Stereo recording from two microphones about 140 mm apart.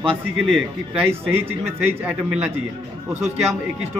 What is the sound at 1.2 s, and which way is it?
Speech, 15° right (ahead or behind).